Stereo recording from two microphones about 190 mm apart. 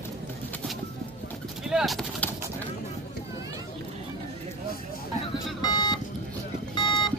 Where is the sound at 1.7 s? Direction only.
Centre (ahead or behind).